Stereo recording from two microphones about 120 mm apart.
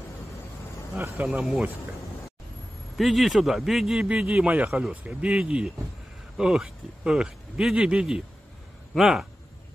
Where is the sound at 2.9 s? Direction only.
Centre (ahead or behind).